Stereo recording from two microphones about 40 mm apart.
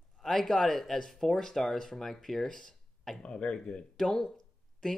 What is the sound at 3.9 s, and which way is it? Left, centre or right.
Speech, centre.